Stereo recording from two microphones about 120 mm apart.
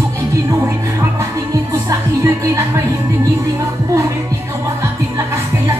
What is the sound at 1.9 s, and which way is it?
Music, 25° right (ahead or behind).